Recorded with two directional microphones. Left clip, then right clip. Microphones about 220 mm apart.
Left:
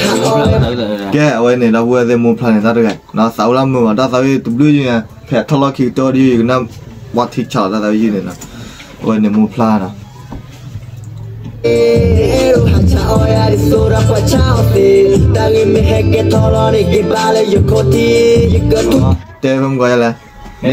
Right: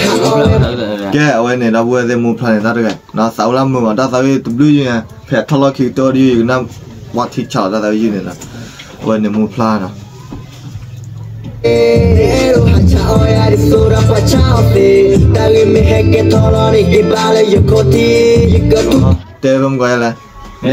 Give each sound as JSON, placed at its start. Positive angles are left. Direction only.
{"t": 0.0, "sound": "music", "side_deg": -20}
{"t": 0.4, "sound": "a sound", "side_deg": 10}
{"t": 1.1, "sound": "speech", "side_deg": 25}
{"t": 9.0, "sound": "speech", "side_deg": 20}
{"t": 11.6, "sound": "music", "side_deg": -20}
{"t": 19.0, "sound": "speech", "side_deg": 20}